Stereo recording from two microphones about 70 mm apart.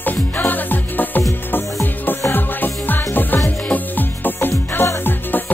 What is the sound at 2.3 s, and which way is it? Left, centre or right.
Music, left.